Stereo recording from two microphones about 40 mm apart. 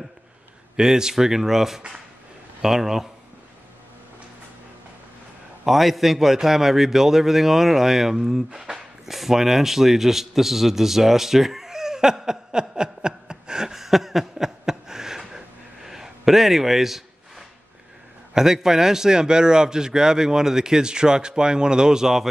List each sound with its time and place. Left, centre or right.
0.7 s a man's voice: centre
5.7 s a man's voice: centre
8.7 s a sound: centre
18.3 s a man's voice: centre